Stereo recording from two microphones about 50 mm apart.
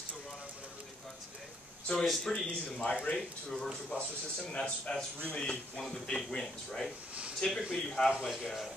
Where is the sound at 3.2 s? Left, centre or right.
Centre.